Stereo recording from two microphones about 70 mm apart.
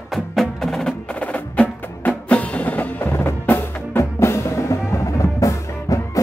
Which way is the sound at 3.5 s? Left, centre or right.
Left.